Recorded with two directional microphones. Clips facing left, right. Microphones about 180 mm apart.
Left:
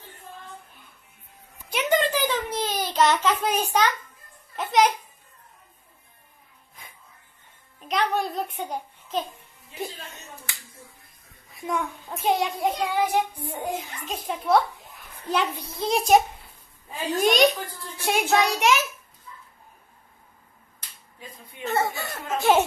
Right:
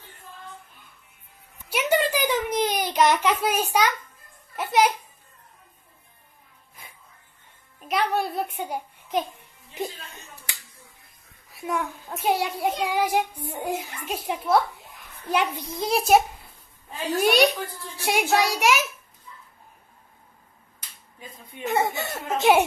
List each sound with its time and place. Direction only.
1.7 s a sound: 10° right (ahead or behind)
4.6 s a child's voice: 5° right (ahead or behind)
7.8 s a child's voice: 10° right (ahead or behind)
11.5 s child singing: 5° right (ahead or behind)
15.9 s a child's voice: 5° right (ahead or behind)
17.1 s child singing: 10° right (ahead or behind)
21.6 s speech: 15° right (ahead or behind)